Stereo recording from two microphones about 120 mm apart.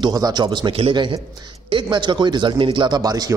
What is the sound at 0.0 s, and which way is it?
A man's voice, 35° right (ahead or behind).